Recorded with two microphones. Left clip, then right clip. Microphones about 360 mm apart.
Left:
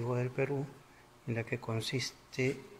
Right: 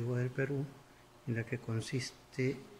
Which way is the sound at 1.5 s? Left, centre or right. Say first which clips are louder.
Left 4 dB; centre.